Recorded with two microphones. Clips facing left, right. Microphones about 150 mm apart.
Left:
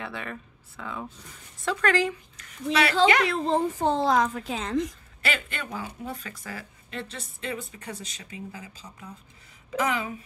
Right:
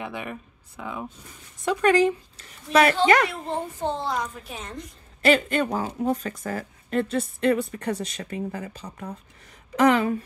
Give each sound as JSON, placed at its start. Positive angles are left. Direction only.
{"t": 0.0, "sound": "speech", "side_deg": -15}
{"t": 2.7, "sound": "speech", "side_deg": -45}
{"t": 3.3, "sound": "a child's voice", "side_deg": 90}
{"t": 5.2, "sound": "a woman's voice", "side_deg": -40}
{"t": 9.8, "sound": "a woman's voice", "side_deg": -70}